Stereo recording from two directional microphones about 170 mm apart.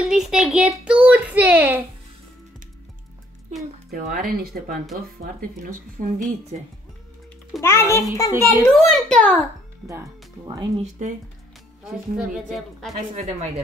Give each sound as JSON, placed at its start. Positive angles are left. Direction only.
{"t": 0.0, "sound": "a sound", "side_deg": -5}
{"t": 3.9, "sound": "speech", "side_deg": -55}
{"t": 7.6, "sound": "a child's voice", "side_deg": 15}
{"t": 8.7, "sound": "a child's voice", "side_deg": 0}
{"t": 9.8, "sound": "speech", "side_deg": -15}
{"t": 10.8, "sound": "speech", "side_deg": -45}
{"t": 11.8, "sound": "a child's voice", "side_deg": -5}
{"t": 13.1, "sound": "speech", "side_deg": -45}